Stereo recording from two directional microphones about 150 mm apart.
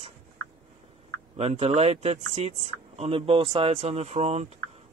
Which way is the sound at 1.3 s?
45° right (ahead or behind).